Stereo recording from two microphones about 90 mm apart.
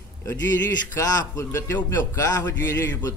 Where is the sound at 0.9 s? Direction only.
40° left (ahead or behind).